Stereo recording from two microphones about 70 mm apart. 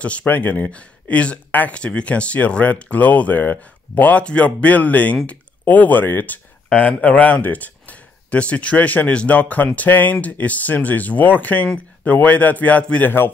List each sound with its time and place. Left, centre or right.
0.0 s speech: centre